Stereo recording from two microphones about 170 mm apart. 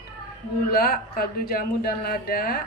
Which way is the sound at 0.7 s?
60° left (ahead or behind).